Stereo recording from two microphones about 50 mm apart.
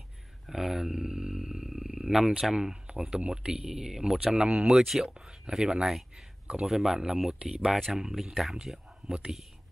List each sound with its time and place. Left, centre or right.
0.5 s speech: centre
4.8 s speech: centre
6.4 s speech: right
6.7 s speech: centre
7.4 s speech: right
7.9 s speech: centre